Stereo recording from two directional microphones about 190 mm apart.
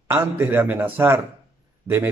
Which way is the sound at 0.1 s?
10° right (ahead or behind).